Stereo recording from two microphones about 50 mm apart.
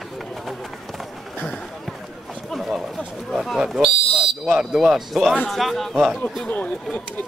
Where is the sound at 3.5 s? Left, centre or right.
Centre.